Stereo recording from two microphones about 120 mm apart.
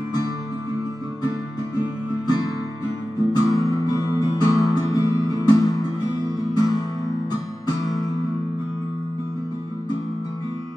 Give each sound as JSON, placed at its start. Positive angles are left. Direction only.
{"t": 1.8, "sound": "music", "side_deg": 35}